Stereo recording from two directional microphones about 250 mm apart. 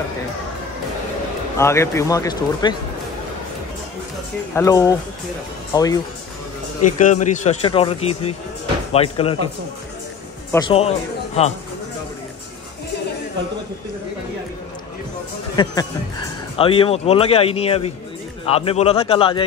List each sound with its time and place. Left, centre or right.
1.6 s speech: centre
4.6 s speech: centre
6.8 s speech: left
10.5 s speech: centre
15.5 s speech: centre